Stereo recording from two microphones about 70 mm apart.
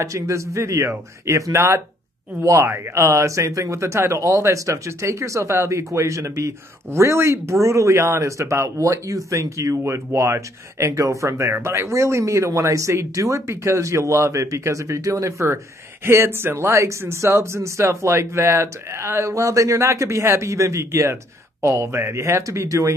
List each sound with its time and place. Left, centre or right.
0.0 s speech: right